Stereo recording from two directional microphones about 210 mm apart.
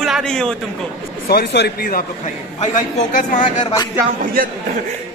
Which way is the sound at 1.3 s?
50° left (ahead or behind).